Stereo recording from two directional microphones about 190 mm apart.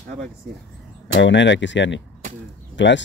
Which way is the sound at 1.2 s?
70° left (ahead or behind).